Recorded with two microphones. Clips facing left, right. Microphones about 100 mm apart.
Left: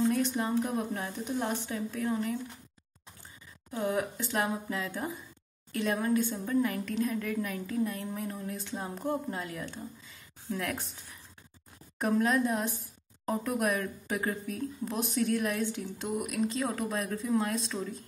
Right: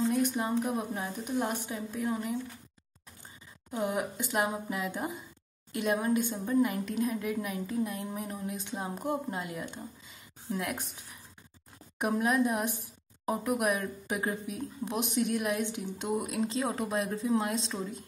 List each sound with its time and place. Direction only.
0.1 s a woman's voice: 15° right (ahead or behind)
3.7 s a woman's voice: 15° right (ahead or behind)
12.0 s a woman's voice: 15° right (ahead or behind)